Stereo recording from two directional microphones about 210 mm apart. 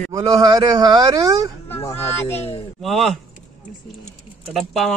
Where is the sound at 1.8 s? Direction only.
25° left (ahead or behind).